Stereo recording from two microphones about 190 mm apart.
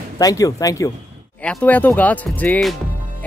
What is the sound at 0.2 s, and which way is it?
Speech, 20° left (ahead or behind).